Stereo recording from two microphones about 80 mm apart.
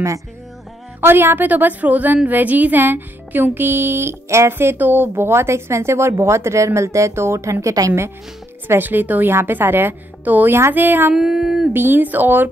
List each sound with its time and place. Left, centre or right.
1.0 s a woman's voice: right
7.6 s a woman's voice: right
8.6 s a woman's voice: right
11.1 s a sound: centre
11.7 s a woman's voice: right